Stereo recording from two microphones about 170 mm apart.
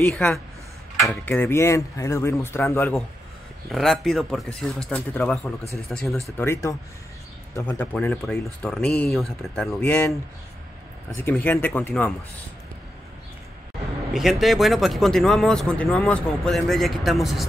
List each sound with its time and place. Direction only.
0.0 s speech: 5° left (ahead or behind)
3.7 s speech: centre (ahead or behind)
6.3 s speech: 15° left (ahead or behind)
11.1 s speech: 15° left (ahead or behind)
14.1 s speech: centre (ahead or behind)